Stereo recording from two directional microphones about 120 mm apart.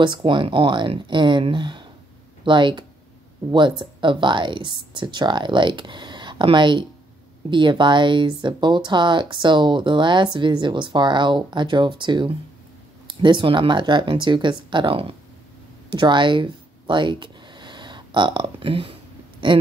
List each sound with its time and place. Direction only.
0.0 s speech: 40° right (ahead or behind)